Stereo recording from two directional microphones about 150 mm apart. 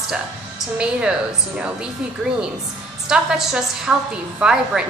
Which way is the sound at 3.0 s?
5° right (ahead or behind).